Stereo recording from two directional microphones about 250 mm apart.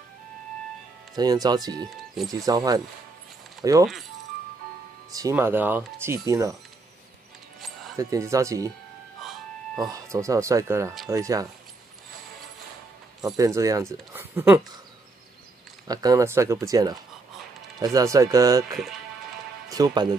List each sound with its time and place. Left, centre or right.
1.1 s speech: centre
3.6 s speech: centre
5.1 s speech: centre
8.0 s speech: centre
9.2 s music: centre
9.8 s speech: centre
13.6 s speech: centre
15.9 s speech: centre
18.7 s speech: centre
19.7 s speech: centre